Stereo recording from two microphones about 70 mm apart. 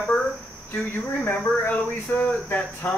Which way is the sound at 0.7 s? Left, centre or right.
Left.